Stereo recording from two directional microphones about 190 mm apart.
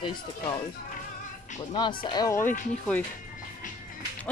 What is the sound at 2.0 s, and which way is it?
Speech, 20° left (ahead or behind).